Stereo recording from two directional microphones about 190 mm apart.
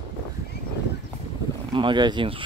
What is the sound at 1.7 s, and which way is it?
Speech, 25° right (ahead or behind).